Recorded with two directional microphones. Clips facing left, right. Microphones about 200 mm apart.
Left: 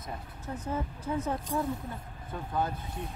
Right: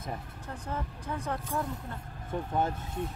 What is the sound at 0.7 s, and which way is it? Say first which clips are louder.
Speech: left 3 dB; 10° left (ahead or behind).